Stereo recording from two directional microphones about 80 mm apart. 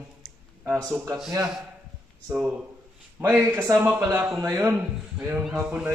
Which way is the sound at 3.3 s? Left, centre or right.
Right.